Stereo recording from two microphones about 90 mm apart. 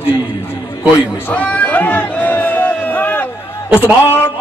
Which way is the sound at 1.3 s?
15° left (ahead or behind).